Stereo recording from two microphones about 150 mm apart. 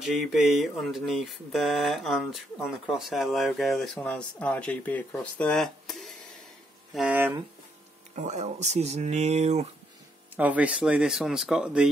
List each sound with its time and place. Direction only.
0.0 s a sound: centre (ahead or behind)
6.9 s speech: 5° right (ahead or behind)
8.2 s speech: 50° right (ahead or behind)
10.3 s speech: 10° right (ahead or behind)